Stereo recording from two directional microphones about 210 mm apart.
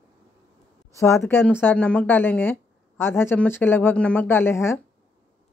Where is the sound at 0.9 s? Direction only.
15° left (ahead or behind).